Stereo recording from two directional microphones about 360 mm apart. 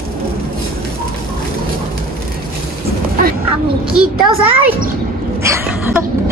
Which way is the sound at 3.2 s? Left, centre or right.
Right.